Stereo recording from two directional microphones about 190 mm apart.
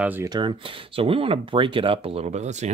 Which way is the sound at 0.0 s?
10° right (ahead or behind).